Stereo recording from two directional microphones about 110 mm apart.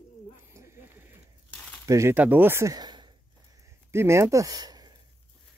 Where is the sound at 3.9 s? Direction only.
25° right (ahead or behind).